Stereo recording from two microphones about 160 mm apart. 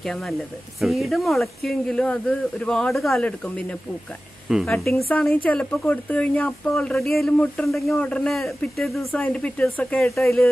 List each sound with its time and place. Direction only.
0.0 s a man's voice: centre (ahead or behind)